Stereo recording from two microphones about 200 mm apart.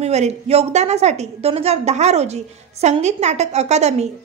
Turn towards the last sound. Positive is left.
turn(degrees=-35)  # may be behind; listen again after turning